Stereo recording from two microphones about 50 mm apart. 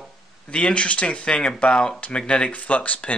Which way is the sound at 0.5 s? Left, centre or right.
Left.